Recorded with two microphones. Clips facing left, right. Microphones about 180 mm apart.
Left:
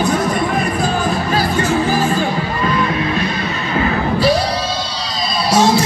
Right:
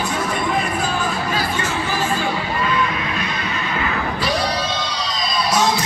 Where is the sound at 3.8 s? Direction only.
35° left (ahead or behind).